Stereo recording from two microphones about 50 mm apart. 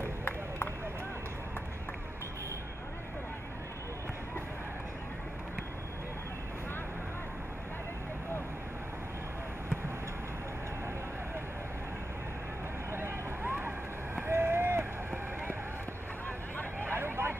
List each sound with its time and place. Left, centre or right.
0.0 s a sound: left
12.9 s vehicle: right
16.8 s vehicle: right